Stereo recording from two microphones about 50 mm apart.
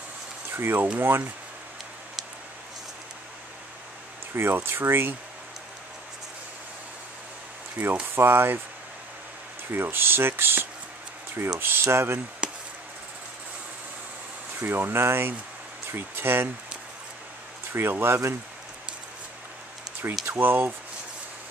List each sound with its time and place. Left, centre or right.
0.5 s speech: right
4.4 s speech: right
7.8 s speech: right
8.1 s speech: right
9.7 s speech: right
12.4 s a sound: centre
14.6 s speech: right
17.7 s speech: right
20.2 s speech: right